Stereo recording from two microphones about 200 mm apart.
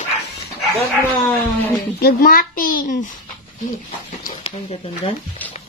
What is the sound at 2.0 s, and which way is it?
Speech, 50° left (ahead or behind).